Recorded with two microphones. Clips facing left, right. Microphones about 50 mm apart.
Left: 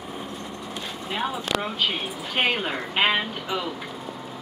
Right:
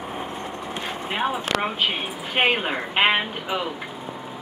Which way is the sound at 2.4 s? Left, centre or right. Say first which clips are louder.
Right 3 dB; right.